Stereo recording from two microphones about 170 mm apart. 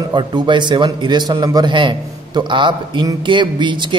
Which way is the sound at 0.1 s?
25° right (ahead or behind).